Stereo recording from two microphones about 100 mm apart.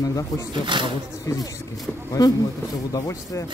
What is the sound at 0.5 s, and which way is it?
Speech, 55° right (ahead or behind).